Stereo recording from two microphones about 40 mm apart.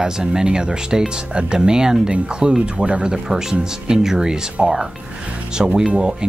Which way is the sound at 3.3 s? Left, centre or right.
Centre.